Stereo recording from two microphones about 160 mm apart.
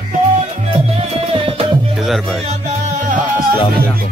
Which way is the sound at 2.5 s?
50° right (ahead or behind).